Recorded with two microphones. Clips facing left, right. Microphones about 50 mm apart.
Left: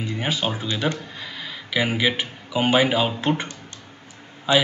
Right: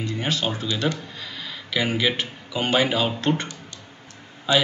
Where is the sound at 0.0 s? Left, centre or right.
Centre.